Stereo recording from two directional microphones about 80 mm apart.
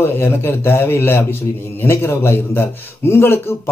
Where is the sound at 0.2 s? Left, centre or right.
Left.